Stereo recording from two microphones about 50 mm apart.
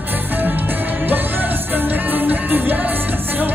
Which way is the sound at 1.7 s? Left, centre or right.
Right.